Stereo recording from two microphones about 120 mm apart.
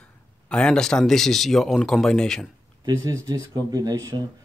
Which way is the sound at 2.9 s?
30° right (ahead or behind).